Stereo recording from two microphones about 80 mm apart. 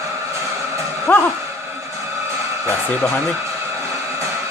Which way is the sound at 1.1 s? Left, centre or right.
Left.